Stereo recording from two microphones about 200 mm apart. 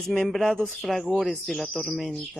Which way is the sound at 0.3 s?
Centre (ahead or behind).